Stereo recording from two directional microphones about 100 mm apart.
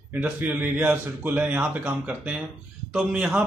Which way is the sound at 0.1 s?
15° right (ahead or behind).